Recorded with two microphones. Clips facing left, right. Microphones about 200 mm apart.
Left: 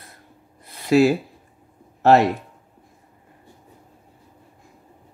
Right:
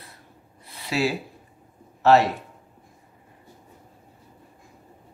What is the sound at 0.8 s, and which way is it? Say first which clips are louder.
Speech: left 9 dB; 50° left (ahead or behind).